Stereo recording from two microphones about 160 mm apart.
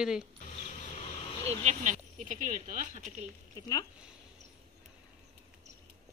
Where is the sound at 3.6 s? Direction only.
25° left (ahead or behind).